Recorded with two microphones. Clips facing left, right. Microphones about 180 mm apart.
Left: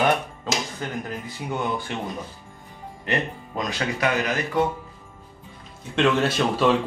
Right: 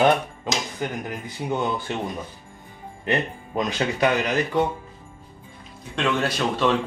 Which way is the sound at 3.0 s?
25° right (ahead or behind).